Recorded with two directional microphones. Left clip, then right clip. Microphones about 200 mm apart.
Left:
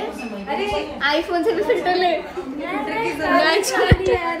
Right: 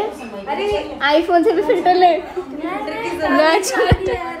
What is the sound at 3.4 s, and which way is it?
Speech, 30° right (ahead or behind).